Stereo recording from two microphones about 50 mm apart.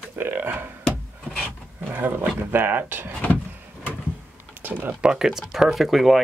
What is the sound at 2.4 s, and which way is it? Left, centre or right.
Speech, right.